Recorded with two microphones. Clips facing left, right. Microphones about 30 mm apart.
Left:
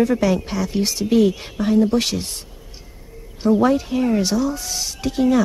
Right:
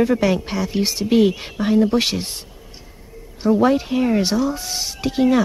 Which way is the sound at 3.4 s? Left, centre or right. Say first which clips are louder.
Even; centre.